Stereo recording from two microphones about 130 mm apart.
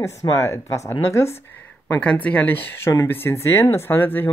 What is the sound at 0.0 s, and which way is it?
Speech, 20° left (ahead or behind).